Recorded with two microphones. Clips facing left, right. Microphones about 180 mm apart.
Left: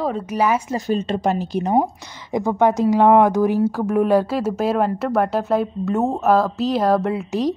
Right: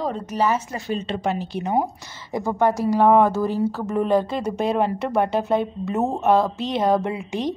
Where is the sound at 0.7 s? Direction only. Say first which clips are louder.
Left 5 dB; 40° left (ahead or behind).